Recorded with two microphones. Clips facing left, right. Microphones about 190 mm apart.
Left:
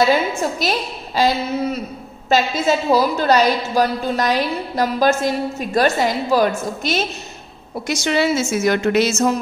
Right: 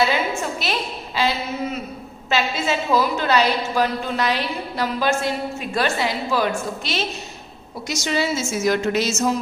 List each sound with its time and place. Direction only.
0.4 s a woman's voice: 40° left (ahead or behind)
7.9 s a woman's voice: 60° left (ahead or behind)